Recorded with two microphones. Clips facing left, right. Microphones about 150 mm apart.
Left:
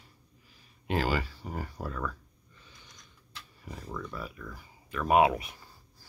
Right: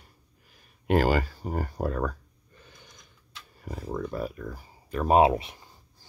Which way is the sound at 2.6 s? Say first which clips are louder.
Right 3 dB; 50° right (ahead or behind).